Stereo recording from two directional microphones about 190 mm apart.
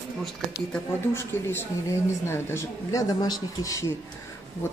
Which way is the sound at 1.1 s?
15° left (ahead or behind).